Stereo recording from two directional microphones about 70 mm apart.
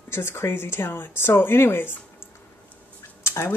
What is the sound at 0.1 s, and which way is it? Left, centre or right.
Speech, left.